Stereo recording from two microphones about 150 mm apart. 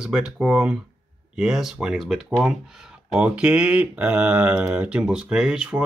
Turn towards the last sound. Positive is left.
turn(degrees=-5)  # may be behind; listen again after turning